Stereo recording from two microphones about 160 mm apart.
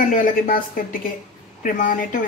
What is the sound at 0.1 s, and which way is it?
Speech, 55° left (ahead or behind).